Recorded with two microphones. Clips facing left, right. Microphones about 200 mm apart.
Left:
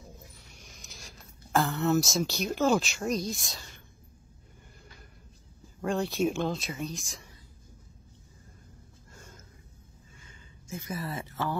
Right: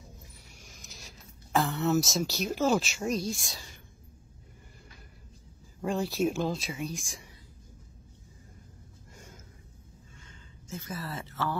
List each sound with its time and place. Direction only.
0.7 s mechanisms: centre (ahead or behind)
1.5 s speech: centre (ahead or behind)
5.8 s speech: 5° right (ahead or behind)
9.1 s a sound: 15° right (ahead or behind)
10.7 s speech: 15° left (ahead or behind)